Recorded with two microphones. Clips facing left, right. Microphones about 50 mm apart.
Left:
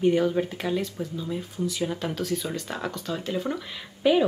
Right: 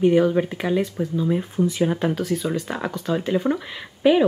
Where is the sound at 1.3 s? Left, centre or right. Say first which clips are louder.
Right 8 dB; right.